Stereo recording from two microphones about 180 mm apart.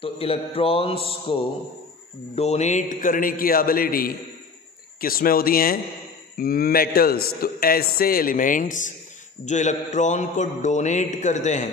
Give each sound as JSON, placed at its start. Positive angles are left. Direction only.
{"t": 0.0, "sound": "mantra", "side_deg": 30}
{"t": 2.3, "sound": "a man's voice", "side_deg": 35}
{"t": 9.5, "sound": "mantra", "side_deg": 40}